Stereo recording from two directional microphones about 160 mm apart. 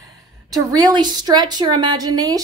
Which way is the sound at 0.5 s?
25° right (ahead or behind).